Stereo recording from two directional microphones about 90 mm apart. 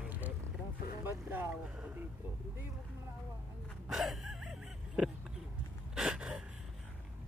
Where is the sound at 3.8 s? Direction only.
Centre (ahead or behind).